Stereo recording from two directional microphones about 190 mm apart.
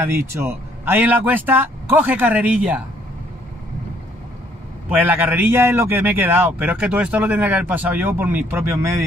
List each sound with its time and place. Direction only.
0.0 s a man's voice: 10° right (ahead or behind)
4.8 s a man's voice: 10° right (ahead or behind)